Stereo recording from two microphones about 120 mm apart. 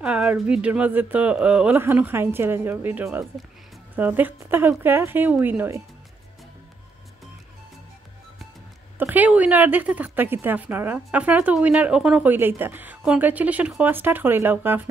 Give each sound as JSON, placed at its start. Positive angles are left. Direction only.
{"t": 0.0, "sound": "a woman's voice", "side_deg": -10}
{"t": 8.9, "sound": "a woman's voice", "side_deg": -15}